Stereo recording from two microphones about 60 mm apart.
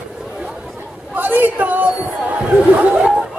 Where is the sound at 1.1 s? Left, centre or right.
Right.